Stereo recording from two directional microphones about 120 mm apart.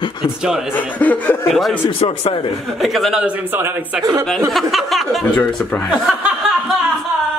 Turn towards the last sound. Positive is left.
turn(degrees=0)  # may be behind; listen again after turning